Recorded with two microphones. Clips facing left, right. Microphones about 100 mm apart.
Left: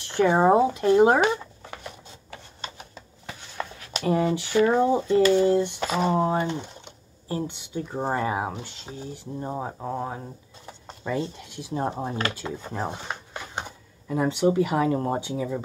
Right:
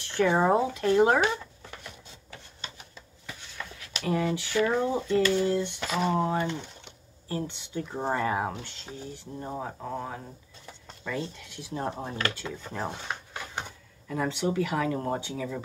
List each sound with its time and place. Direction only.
0.1 s speech: 25° left (ahead or behind)
2.3 s printer: 45° left (ahead or behind)
3.5 s speech: 30° left (ahead or behind)
5.8 s speech: 35° left (ahead or behind); by 9.3 s 10° left (ahead or behind)
9.4 s speech: 20° left (ahead or behind)